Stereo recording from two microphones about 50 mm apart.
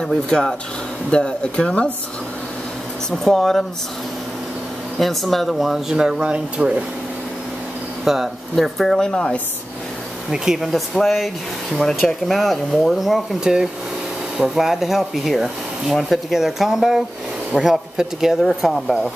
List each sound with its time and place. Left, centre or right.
0.0 s speech: centre
1.1 s speech: centre
3.1 s speech: centre
4.9 s speech: centre
6.3 s speech: right
8.0 s speech: centre
10.3 s speech: centre
10.7 s speech: centre
18.4 s speech: centre